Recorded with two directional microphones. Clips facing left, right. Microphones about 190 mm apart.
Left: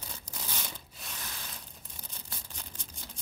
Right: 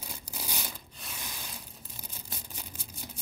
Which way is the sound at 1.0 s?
Centre (ahead or behind).